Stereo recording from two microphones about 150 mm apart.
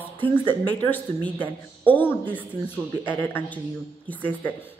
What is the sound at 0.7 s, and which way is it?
Speech, 10° left (ahead or behind).